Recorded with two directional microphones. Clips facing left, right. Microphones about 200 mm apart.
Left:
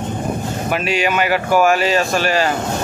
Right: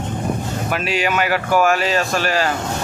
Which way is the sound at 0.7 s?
Centre (ahead or behind).